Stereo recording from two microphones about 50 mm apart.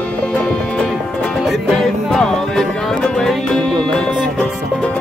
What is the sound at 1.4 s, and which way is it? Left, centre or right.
Music, centre.